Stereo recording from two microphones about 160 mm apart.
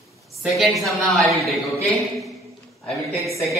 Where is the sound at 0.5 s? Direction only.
Centre (ahead or behind).